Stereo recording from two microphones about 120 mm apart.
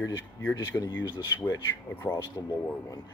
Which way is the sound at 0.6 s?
30° left (ahead or behind).